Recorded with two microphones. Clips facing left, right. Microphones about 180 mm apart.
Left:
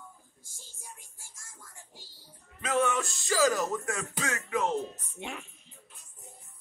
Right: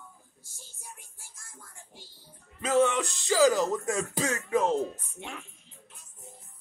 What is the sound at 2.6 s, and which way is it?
Music, 30° right (ahead or behind).